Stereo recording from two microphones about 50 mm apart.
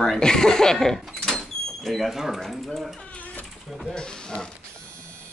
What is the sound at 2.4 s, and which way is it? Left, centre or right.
Speech, centre.